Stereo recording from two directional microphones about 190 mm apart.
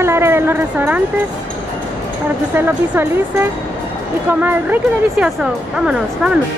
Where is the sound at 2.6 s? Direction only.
10° right (ahead or behind).